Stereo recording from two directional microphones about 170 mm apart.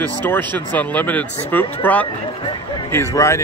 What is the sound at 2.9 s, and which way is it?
Speech, 15° left (ahead or behind).